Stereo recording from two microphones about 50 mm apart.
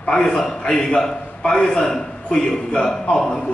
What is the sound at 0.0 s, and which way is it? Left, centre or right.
A man's voice, centre.